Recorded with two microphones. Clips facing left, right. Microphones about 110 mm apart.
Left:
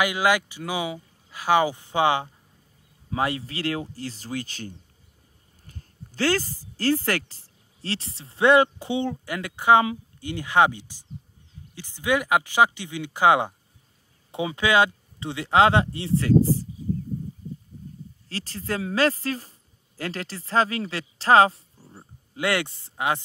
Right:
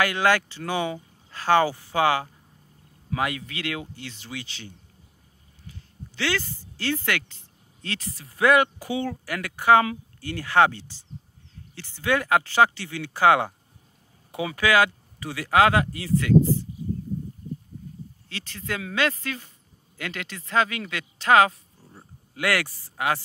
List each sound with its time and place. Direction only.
0.0 s speech: 15° left (ahead or behind); by 16.6 s 35° left (ahead or behind)
18.3 s speech: 35° left (ahead or behind)
21.7 s a sound: 5° left (ahead or behind)
22.3 s speech: 25° left (ahead or behind)